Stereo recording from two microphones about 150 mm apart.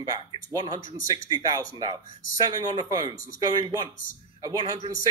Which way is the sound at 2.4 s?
25° right (ahead or behind).